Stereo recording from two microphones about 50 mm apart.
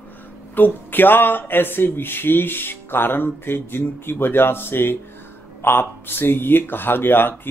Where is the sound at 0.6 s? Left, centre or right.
Left.